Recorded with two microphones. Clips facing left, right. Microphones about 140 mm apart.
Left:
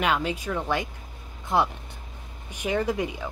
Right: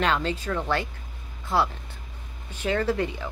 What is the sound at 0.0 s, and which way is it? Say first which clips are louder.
Speech: even; 10° left (ahead or behind).